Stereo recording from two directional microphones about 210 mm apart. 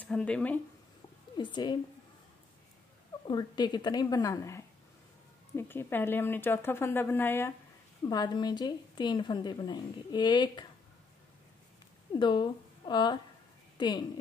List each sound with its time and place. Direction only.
0.0 s speech: 5° left (ahead or behind)
1.3 s a woman's voice: 20° left (ahead or behind)
3.3 s a woman's voice: 20° left (ahead or behind)
12.1 s a woman's voice: 20° left (ahead or behind)